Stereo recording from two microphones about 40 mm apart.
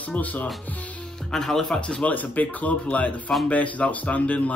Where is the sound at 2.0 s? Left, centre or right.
Left.